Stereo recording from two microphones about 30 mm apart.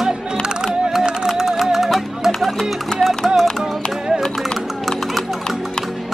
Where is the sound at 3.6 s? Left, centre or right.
Centre.